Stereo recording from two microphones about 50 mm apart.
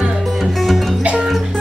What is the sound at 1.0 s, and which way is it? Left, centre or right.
Music, centre.